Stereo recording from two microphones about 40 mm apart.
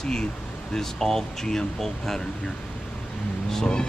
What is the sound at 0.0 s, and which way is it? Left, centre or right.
Speech, centre.